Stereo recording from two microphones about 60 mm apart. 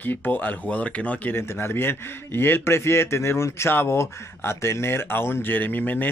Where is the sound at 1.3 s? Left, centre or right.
Left.